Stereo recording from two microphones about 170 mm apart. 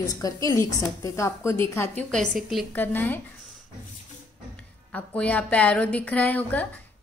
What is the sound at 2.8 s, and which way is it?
Speech, 10° left (ahead or behind).